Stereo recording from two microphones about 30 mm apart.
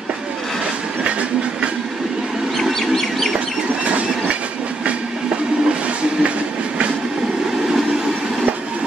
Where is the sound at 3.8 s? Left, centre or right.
Right.